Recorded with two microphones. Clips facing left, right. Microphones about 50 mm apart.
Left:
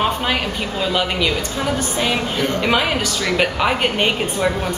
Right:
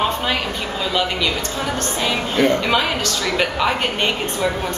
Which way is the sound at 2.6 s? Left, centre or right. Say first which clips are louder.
Left 1 dB; centre.